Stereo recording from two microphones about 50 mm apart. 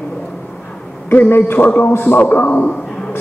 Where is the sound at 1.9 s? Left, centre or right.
Left.